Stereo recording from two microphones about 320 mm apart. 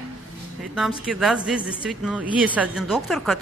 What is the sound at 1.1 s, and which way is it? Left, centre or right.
A man's voice, centre.